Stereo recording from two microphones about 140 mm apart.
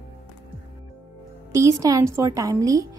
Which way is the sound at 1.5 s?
25° right (ahead or behind).